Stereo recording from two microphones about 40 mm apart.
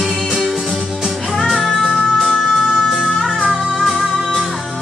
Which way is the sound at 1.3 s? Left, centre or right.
Centre.